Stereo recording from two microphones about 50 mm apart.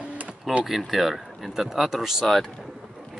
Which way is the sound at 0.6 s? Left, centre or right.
Centre.